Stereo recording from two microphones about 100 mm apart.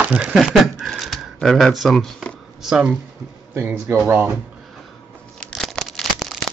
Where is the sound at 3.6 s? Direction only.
25° right (ahead or behind).